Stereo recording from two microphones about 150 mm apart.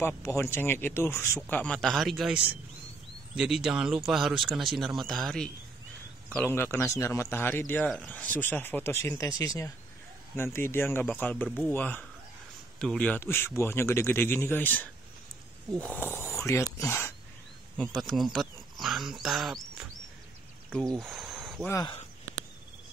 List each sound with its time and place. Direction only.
0.0 s a man's voice: 20° left (ahead or behind); by 5.5 s 5° left (ahead or behind)
6.3 s a man's voice: 15° left (ahead or behind)
16.2 s a sound: 20° left (ahead or behind)
16.7 s a man's voice: 20° left (ahead or behind)
17.7 s speech: centre (ahead or behind)
21.0 s a sound: centre (ahead or behind)